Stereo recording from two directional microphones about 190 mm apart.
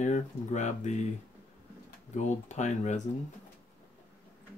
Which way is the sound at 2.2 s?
40° left (ahead or behind).